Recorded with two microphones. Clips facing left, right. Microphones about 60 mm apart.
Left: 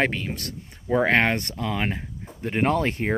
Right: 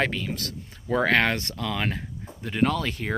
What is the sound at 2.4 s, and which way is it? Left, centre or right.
Speech, left.